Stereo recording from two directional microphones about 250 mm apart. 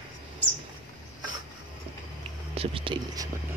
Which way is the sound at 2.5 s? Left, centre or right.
Right.